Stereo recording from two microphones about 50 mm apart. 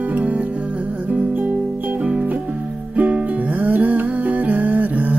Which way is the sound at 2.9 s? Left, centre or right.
Right.